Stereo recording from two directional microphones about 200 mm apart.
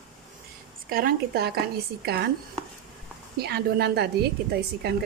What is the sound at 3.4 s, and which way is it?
Speech, 55° right (ahead or behind).